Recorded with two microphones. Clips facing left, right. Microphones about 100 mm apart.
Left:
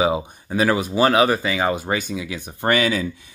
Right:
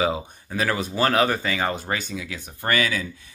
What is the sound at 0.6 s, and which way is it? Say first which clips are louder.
Speech: left 5 dB; 10° left (ahead or behind).